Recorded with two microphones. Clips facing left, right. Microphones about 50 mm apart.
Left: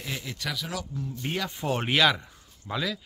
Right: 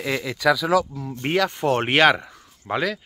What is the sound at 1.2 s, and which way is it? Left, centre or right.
Speech, right.